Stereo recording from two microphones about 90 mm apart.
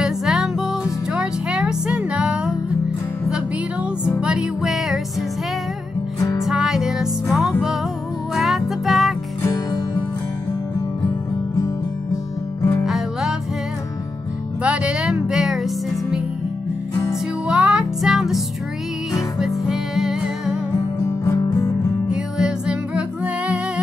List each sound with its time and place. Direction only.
0.0 s music: 5° right (ahead or behind)
4.2 s music: 10° right (ahead or behind)
6.1 s music: 35° left (ahead or behind)
6.4 s music: 5° right (ahead or behind)
12.8 s music: 5° right (ahead or behind)
14.6 s music: 15° right (ahead or behind)
21.2 s music: 40° left (ahead or behind)
22.1 s music: 10° right (ahead or behind)